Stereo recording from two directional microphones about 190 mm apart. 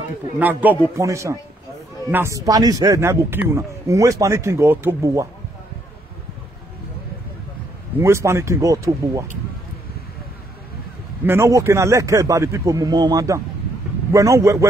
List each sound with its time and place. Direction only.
0.4 s speech: 10° right (ahead or behind)
8.0 s speech: 15° right (ahead or behind)
11.2 s speech: 15° right (ahead or behind)